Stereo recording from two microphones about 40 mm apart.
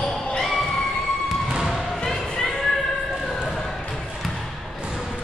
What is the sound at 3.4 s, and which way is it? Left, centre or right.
Basketball bounce, centre.